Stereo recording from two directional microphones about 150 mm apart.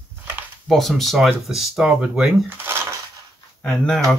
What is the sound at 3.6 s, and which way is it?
Speech, 5° left (ahead or behind).